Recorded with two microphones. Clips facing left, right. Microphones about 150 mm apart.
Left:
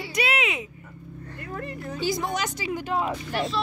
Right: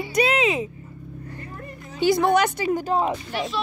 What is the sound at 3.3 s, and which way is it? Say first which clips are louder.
Speech: even; centre (ahead or behind).